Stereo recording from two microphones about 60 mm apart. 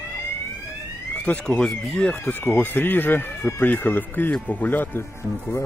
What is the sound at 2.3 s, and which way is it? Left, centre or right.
Speech, left.